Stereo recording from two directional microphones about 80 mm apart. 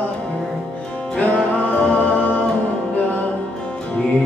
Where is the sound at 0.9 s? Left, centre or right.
Centre.